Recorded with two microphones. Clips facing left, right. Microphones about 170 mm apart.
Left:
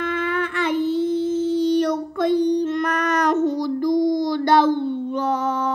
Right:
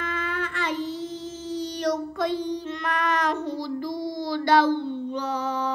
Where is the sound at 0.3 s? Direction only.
60° left (ahead or behind).